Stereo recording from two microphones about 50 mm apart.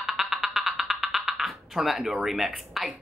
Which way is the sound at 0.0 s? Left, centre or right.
Centre.